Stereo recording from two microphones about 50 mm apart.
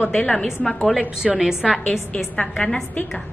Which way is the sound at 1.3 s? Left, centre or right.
Centre.